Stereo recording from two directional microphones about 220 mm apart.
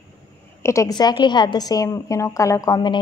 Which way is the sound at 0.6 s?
15° left (ahead or behind).